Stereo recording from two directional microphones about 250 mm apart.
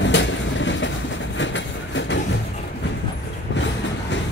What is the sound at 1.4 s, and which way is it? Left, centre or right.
Train, left.